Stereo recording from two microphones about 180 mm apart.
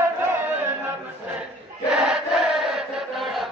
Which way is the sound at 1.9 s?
Centre (ahead or behind).